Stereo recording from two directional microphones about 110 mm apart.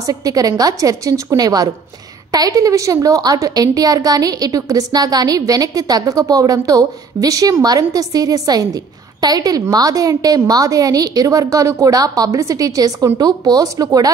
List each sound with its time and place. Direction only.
0.0 s a woman's voice: 35° right (ahead or behind)